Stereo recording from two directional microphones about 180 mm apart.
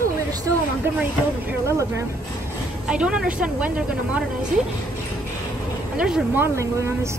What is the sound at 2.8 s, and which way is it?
Speech, 5° right (ahead or behind).